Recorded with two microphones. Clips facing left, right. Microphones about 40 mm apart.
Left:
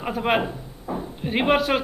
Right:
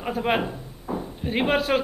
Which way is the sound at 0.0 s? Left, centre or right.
Centre.